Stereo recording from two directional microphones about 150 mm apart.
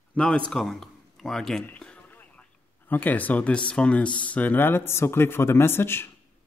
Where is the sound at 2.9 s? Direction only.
10° left (ahead or behind).